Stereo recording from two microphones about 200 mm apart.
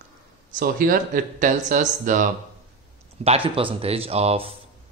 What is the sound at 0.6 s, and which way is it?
Speech, 45° right (ahead or behind).